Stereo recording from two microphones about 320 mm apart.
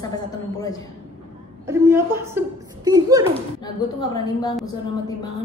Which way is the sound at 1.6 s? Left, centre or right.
Centre.